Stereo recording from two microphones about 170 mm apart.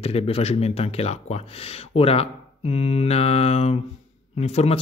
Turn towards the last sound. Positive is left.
turn(degrees=40)  # may be behind; listen again after turning